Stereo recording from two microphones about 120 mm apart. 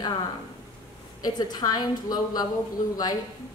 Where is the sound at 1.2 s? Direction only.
35° left (ahead or behind).